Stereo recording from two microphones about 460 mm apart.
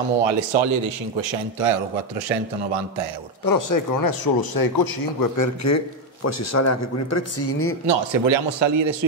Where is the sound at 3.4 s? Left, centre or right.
Left.